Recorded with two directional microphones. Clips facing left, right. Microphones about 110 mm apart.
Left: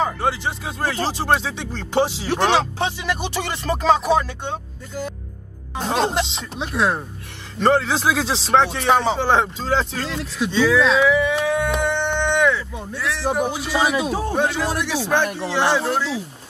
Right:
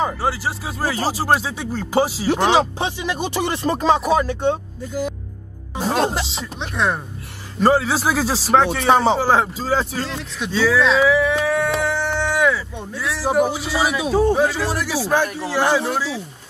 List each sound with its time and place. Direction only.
0.2 s speech: 5° right (ahead or behind)
5.8 s music: 5° right (ahead or behind)
7.6 s speech: 5° right (ahead or behind)
8.8 s speech: 20° right (ahead or behind); by 16.2 s centre (ahead or behind)